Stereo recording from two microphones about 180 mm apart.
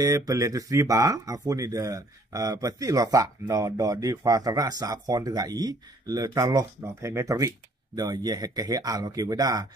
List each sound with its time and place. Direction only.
0.0 s speech: 20° right (ahead or behind)